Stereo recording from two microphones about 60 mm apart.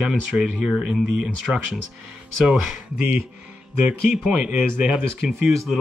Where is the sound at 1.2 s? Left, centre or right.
Centre.